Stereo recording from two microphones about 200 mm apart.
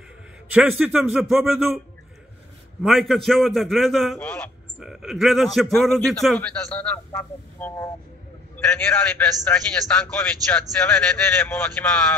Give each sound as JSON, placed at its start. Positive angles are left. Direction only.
{"t": 0.5, "sound": "speech", "side_deg": -5}
{"t": 2.8, "sound": "speech", "side_deg": 0}